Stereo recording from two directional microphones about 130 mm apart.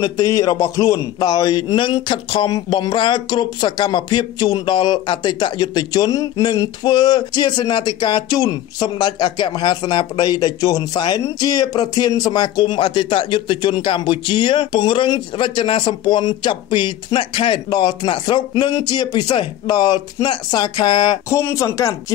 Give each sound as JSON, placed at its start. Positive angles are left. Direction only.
{"t": 0.0, "sound": "speech", "side_deg": 30}
{"t": 21.3, "sound": "speech", "side_deg": 20}